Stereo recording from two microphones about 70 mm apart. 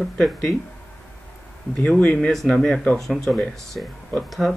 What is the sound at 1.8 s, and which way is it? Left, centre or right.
Speech, centre.